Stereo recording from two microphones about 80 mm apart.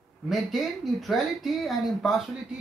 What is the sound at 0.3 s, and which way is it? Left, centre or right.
Speech, centre.